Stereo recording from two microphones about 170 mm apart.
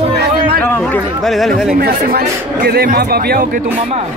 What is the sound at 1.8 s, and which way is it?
Speech, 65° right (ahead or behind).